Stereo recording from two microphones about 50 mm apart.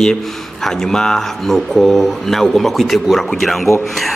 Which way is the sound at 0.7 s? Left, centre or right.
Centre.